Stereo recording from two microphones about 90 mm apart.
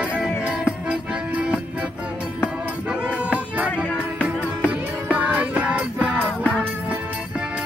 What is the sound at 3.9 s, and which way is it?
Music, 15° left (ahead or behind).